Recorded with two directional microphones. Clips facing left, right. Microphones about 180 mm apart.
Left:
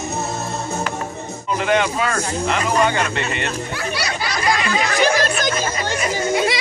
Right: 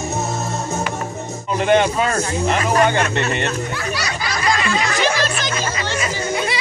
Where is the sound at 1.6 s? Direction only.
35° right (ahead or behind).